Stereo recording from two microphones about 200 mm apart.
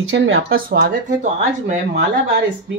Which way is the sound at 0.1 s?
65° right (ahead or behind).